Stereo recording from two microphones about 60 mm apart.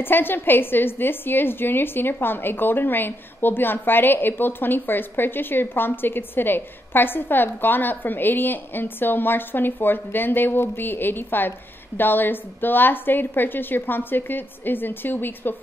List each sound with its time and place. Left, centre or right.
0.0 s a woman's voice: left